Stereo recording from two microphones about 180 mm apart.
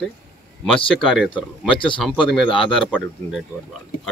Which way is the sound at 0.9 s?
Centre (ahead or behind).